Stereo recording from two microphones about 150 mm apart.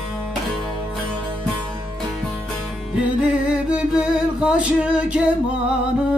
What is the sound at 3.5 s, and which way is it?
Music, 5° right (ahead or behind).